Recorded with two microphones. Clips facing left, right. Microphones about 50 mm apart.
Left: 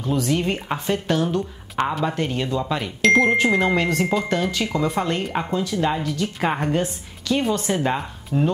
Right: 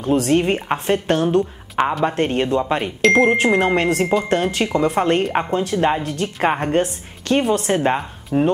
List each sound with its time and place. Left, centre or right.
0.0 s speech: right
3.0 s speech: centre
3.3 s speech: right